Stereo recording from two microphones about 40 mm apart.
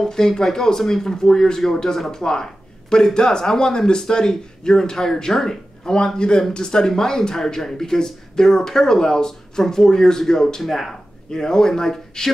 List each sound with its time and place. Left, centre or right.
0.0 s speech: centre
5.9 s a man's voice: left